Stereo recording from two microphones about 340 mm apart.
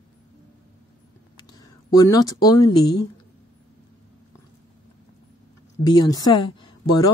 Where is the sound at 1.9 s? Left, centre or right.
Centre.